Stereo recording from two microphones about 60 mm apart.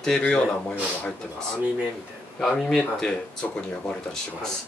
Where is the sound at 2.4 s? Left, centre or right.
Centre.